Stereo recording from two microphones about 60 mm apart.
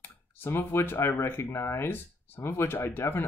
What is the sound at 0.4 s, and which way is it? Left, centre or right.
Speech, left.